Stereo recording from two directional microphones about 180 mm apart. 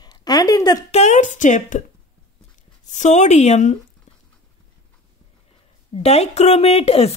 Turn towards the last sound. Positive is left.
turn(degrees=30)  # may be behind; listen again after turning